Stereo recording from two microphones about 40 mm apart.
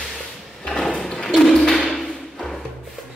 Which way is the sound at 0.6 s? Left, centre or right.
Centre.